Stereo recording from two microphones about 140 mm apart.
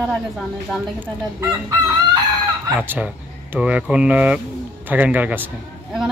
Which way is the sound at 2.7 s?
10° right (ahead or behind).